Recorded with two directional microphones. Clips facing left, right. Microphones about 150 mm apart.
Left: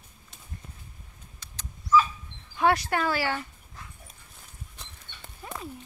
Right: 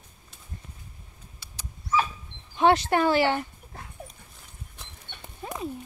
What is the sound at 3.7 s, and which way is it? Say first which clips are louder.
Dog: right 4 dB; 60° right (ahead or behind).